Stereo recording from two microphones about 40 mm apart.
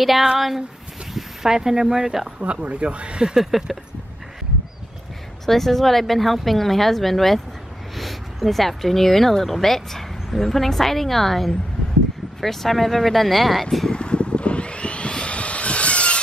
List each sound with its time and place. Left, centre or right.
0.0 s speech: centre
2.4 s speech: right
3.3 s a sound: centre
5.5 s speech: centre
13.9 s vehicle: left